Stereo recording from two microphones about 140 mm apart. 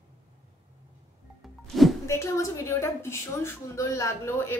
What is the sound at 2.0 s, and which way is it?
A woman's voice, 20° left (ahead or behind).